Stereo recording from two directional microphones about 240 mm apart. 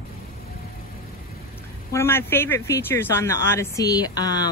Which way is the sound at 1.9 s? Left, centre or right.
Centre.